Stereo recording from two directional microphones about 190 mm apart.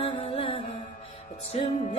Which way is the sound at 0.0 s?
30° left (ahead or behind).